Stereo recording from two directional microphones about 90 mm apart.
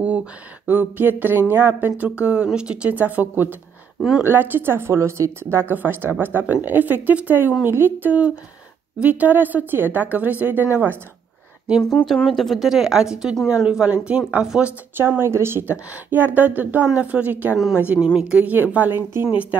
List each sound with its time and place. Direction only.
0.0 s speech: 15° right (ahead or behind)
11.9 s speech: 10° left (ahead or behind); by 14.7 s 10° right (ahead or behind)
15.0 s speech: 25° right (ahead or behind)